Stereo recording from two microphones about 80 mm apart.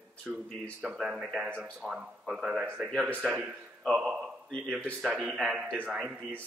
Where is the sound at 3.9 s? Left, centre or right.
Centre.